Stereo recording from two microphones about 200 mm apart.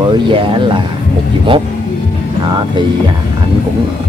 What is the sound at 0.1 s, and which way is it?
Speech, 25° right (ahead or behind).